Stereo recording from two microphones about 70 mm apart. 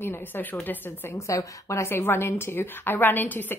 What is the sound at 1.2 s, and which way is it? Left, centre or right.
A woman's voice, left.